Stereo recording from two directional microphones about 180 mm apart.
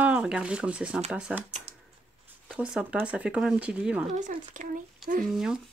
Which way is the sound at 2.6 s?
5° right (ahead or behind).